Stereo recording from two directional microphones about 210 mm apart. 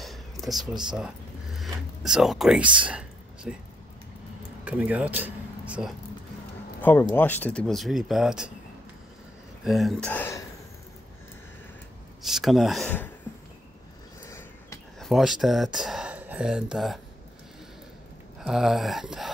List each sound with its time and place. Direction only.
0.0 s a sound: centre (ahead or behind)
4.6 s speech: 5° right (ahead or behind)
6.8 s speech: 10° left (ahead or behind)
9.7 s speech: centre (ahead or behind)
12.4 s speech: centre (ahead or behind)
14.2 s a sound: 15° left (ahead or behind)
15.0 s speech: centre (ahead or behind)
18.4 s speech: centre (ahead or behind)